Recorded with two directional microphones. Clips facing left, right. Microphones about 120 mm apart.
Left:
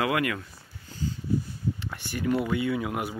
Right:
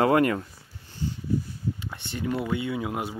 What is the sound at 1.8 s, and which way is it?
Speech, 20° right (ahead or behind).